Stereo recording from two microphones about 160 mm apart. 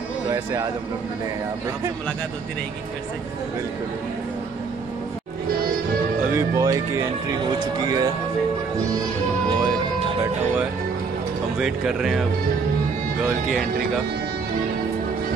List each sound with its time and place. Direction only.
6.3 s speech: 20° right (ahead or behind)
7.8 s speech: 25° right (ahead or behind)
11.6 s speech: 5° right (ahead or behind)